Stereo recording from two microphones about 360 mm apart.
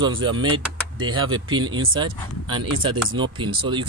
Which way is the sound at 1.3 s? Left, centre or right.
Centre.